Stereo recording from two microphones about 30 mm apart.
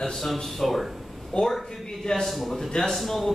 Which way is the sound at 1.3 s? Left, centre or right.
Left.